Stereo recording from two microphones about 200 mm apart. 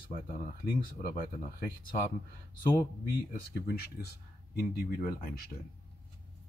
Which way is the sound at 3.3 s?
50° left (ahead or behind).